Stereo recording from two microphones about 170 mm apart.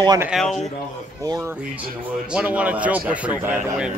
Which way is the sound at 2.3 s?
5° right (ahead or behind).